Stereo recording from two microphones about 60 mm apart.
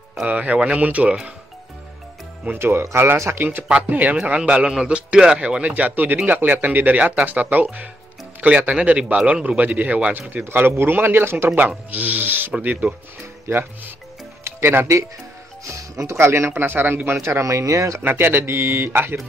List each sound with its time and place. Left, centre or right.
0.2 s speech: right
0.8 s speech: right
2.6 s speech: right
3.9 s speech: right
4.2 s speech: centre
10.4 s speech: right
11.9 s speech: right
12.5 s speech: centre
13.5 s speech: right
14.4 s music: right
15.6 s speech: right
18.0 s speech: right